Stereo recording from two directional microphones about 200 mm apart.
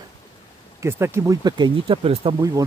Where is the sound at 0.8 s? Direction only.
10° right (ahead or behind).